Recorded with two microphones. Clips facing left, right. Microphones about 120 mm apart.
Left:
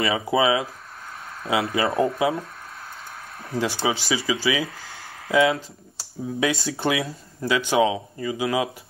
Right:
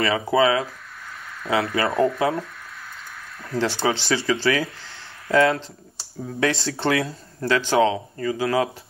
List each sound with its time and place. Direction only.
0.0 s speech: 20° left (ahead or behind)
3.5 s speech: 5° left (ahead or behind)
6.7 s speech: 20° left (ahead or behind)